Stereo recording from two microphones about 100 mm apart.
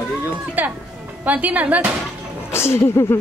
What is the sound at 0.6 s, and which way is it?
Speech, 20° right (ahead or behind).